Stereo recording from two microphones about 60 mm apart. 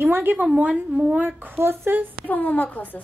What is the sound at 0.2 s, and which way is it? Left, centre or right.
Speech, right.